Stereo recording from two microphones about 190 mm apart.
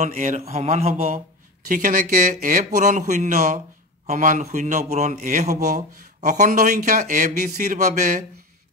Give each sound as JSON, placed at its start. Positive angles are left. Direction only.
{"t": 0.0, "sound": "a man's voice", "side_deg": -40}